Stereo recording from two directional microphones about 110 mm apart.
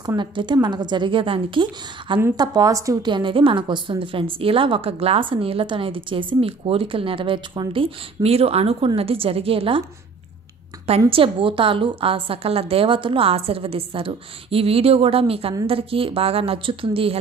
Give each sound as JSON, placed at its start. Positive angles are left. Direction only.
{"t": 0.0, "sound": "a woman's voice", "side_deg": -40}
{"t": 2.3, "sound": "a woman's voice", "side_deg": -40}
{"t": 3.1, "sound": "a woman's voice", "side_deg": -45}
{"t": 11.1, "sound": "a woman's voice", "side_deg": -55}